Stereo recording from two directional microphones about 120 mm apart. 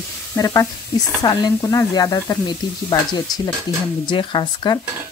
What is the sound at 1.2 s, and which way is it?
Speech, 40° left (ahead or behind).